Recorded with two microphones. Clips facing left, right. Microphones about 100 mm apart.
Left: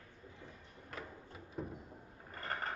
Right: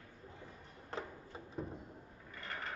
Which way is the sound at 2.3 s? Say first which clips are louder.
Left 4 dB; 45° left (ahead or behind).